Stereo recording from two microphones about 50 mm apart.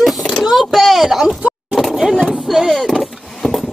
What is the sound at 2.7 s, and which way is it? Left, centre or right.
Vehicle, centre.